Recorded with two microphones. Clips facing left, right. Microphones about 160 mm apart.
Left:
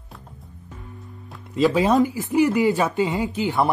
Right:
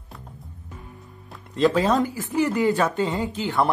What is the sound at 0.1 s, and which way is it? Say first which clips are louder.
Music: right 1 dB; centre (ahead or behind).